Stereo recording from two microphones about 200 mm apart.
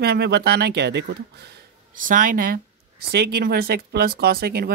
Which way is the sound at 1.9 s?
40° right (ahead or behind).